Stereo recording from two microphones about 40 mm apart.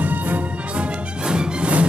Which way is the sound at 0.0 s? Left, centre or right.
Right.